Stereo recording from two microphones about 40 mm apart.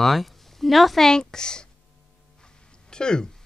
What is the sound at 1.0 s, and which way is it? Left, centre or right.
Speech, centre.